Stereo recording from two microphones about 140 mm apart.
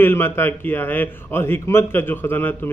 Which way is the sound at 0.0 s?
15° left (ahead or behind).